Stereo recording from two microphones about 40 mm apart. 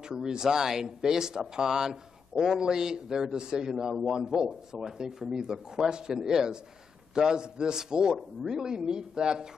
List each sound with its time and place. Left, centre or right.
0.0 s speech: centre